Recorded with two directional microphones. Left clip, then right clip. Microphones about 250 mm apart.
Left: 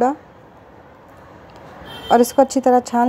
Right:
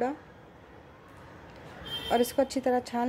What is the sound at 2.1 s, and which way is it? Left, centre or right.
Speech, centre.